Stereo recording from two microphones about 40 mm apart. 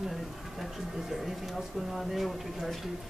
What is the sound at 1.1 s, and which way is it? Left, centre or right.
Speech, centre.